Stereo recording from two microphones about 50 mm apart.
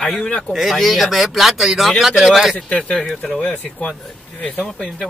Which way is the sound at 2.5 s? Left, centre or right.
Left.